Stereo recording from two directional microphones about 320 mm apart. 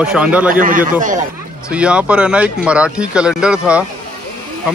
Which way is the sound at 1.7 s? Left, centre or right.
Centre.